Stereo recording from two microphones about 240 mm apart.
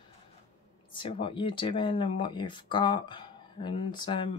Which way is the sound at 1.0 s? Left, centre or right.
Left.